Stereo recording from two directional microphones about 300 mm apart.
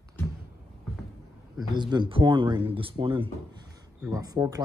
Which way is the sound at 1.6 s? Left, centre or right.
Centre.